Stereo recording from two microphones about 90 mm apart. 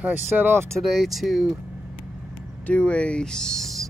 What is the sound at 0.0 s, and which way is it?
Speech, 25° right (ahead or behind).